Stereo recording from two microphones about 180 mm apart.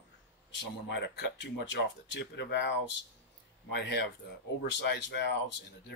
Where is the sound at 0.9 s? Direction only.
70° left (ahead or behind).